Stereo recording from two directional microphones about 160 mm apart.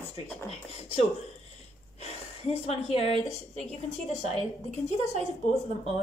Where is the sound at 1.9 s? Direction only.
40° left (ahead or behind).